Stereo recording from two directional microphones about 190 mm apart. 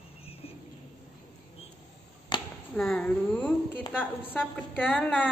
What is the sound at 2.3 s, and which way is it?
Chop, 25° left (ahead or behind).